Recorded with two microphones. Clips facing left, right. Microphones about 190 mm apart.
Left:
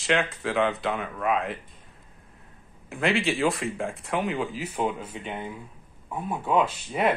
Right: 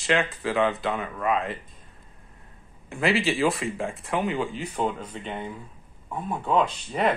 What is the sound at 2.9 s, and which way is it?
Speech, centre (ahead or behind).